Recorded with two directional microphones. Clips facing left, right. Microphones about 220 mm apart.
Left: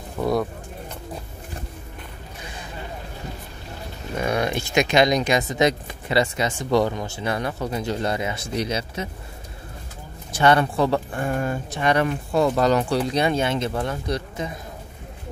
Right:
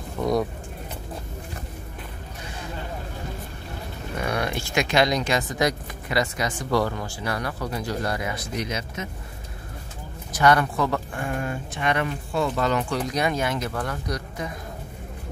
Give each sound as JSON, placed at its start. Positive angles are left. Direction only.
{"t": 0.2, "sound": "speech", "side_deg": 0}
{"t": 4.2, "sound": "speech", "side_deg": 20}
{"t": 10.3, "sound": "speech", "side_deg": 25}